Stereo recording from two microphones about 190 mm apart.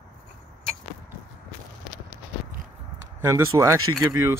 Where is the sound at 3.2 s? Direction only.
15° right (ahead or behind).